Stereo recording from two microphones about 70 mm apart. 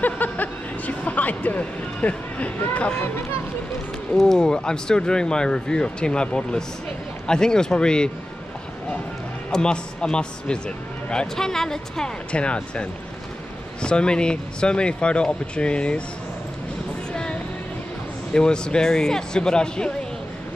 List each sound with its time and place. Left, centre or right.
0.0 s speech: left
4.1 s speech: centre
9.5 s speech: centre
13.8 s speech: centre
17.1 s vehicle: centre
18.3 s speech: centre